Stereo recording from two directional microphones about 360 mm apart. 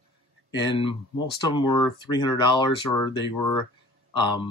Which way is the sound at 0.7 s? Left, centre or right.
Centre.